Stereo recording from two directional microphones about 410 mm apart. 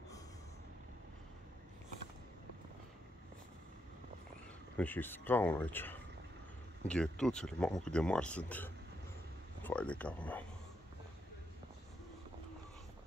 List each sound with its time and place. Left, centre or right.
4.7 s speech: centre